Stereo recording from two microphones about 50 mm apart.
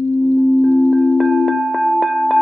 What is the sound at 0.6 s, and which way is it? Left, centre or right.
Wind chime, left.